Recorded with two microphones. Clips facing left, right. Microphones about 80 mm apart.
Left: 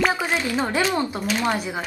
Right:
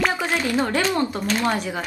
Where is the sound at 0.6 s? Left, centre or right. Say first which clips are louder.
Right 1 dB; centre.